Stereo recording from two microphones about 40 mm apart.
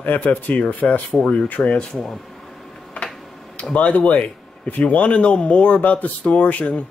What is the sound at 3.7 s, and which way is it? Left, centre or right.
Speech, left.